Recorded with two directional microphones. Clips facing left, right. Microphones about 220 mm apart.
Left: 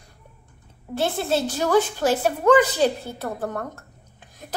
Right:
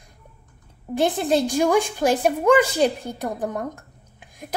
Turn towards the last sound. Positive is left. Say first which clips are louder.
# even
turn(degrees=-10)  # may be behind; listen again after turning